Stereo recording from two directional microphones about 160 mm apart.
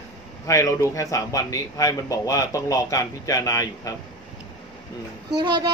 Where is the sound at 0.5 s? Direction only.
20° left (ahead or behind).